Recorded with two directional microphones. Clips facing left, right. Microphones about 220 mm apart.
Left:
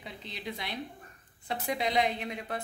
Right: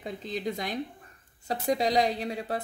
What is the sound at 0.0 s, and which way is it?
Speech, 45° right (ahead or behind).